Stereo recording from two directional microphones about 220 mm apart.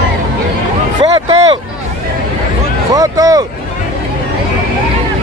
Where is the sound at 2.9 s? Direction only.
15° right (ahead or behind).